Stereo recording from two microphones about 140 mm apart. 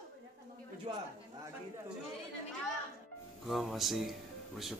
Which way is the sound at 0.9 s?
40° right (ahead or behind).